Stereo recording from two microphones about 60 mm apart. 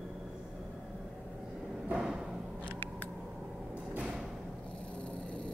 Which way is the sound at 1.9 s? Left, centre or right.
Centre.